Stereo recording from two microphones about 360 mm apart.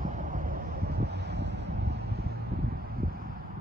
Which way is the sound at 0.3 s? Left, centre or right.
Right.